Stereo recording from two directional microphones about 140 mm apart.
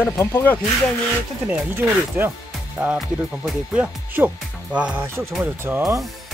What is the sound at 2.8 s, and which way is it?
Speech, 15° right (ahead or behind).